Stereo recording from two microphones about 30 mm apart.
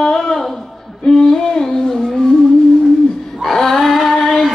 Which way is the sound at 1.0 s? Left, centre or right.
Left.